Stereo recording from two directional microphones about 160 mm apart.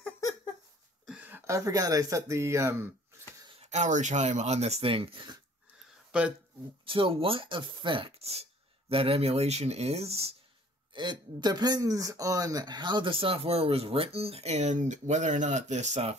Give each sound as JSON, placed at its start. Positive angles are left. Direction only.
{"t": 1.0, "sound": "speech", "side_deg": -10}
{"t": 3.5, "sound": "speech", "side_deg": -45}
{"t": 6.9, "sound": "speech", "side_deg": -35}
{"t": 10.9, "sound": "speech", "side_deg": -30}